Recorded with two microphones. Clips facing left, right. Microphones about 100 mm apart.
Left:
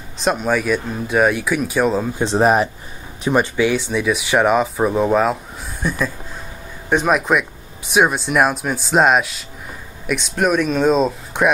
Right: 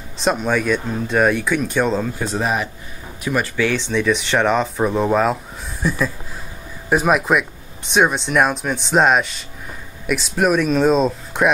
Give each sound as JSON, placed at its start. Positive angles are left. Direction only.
{"t": 0.2, "sound": "speech", "side_deg": 0}
{"t": 2.1, "sound": "speech", "side_deg": 25}
{"t": 2.4, "sound": "speech", "side_deg": 40}
{"t": 3.3, "sound": "speech", "side_deg": 25}